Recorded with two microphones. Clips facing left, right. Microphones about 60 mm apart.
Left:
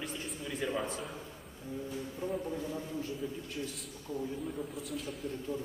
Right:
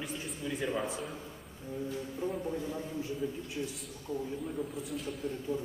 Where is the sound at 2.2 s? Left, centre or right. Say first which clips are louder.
Right 1 dB; centre.